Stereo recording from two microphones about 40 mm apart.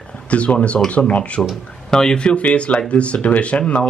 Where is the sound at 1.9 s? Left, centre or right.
Centre.